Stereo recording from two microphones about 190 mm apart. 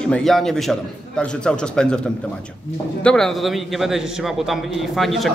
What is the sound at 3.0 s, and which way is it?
A man's voice, 5° left (ahead or behind).